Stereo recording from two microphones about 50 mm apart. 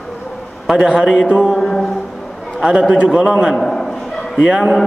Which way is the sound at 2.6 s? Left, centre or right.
Centre.